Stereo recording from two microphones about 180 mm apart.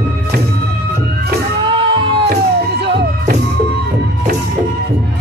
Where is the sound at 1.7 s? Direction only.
30° right (ahead or behind).